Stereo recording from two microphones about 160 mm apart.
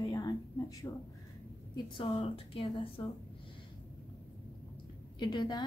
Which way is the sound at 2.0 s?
35° left (ahead or behind).